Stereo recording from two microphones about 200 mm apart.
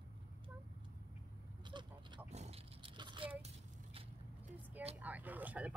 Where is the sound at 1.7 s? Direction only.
25° right (ahead or behind).